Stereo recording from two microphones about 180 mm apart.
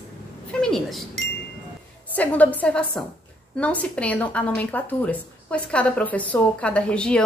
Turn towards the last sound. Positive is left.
turn(degrees=5)  # may be behind; listen again after turning